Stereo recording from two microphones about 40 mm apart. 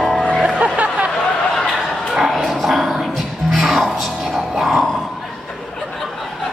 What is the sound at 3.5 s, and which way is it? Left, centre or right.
Music, centre.